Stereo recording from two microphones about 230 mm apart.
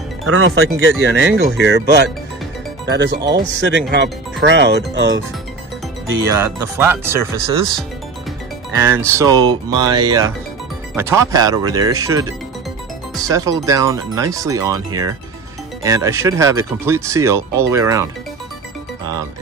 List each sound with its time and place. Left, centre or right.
0.2 s speech: right
0.7 s speech: right
6.6 s speech: centre
8.7 s speech: centre